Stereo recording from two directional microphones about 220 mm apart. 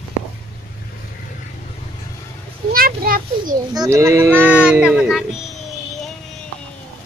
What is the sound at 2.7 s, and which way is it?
Children playing, 40° right (ahead or behind).